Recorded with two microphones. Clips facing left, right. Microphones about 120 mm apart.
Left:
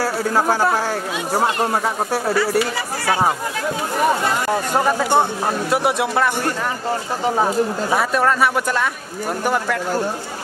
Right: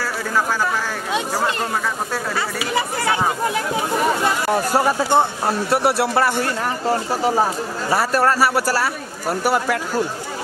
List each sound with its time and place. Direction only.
0.0 s speech: 40° left (ahead or behind)
4.5 s speech: 10° right (ahead or behind)